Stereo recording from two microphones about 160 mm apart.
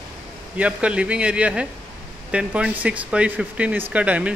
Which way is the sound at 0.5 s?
5° right (ahead or behind).